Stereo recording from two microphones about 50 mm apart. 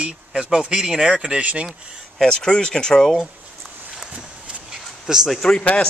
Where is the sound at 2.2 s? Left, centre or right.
Centre.